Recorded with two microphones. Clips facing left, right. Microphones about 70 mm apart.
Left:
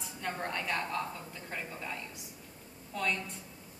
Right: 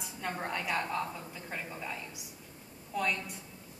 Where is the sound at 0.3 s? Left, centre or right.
Centre.